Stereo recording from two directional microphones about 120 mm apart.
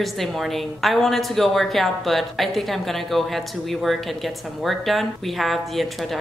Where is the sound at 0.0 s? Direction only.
Centre (ahead or behind).